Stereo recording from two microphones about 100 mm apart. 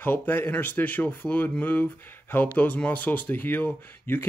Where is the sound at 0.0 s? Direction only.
20° left (ahead or behind).